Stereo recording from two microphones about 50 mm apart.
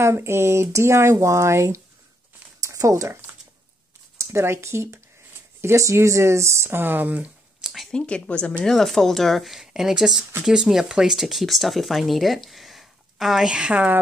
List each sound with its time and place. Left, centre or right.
0.0 s speech: right
2.6 s speech: right
5.8 s speech: right
6.8 s speech: right
7.6 s a sound: centre
7.9 s a woman's voice: left
8.6 s speech: centre
13.5 s a woman's voice: right